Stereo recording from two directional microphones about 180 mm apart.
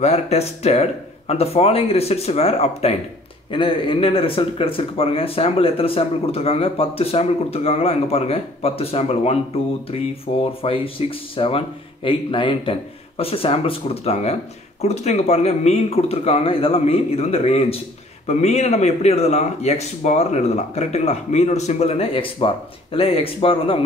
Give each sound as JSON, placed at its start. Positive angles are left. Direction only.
{"t": 0.0, "sound": "speech", "side_deg": 35}